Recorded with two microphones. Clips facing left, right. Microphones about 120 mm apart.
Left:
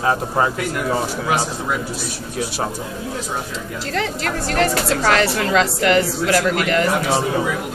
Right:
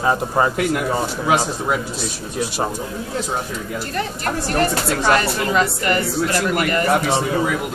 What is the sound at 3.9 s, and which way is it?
A woman's voice, 80° left.